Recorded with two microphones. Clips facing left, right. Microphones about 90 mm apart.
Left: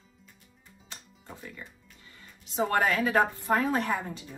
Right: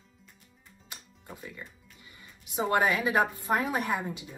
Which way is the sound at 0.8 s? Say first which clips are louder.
Even; 10° right (ahead or behind).